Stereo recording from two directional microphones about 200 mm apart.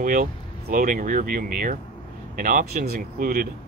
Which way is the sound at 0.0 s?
40° right (ahead or behind).